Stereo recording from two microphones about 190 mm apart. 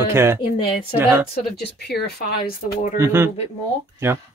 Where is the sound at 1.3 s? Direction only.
55° left (ahead or behind).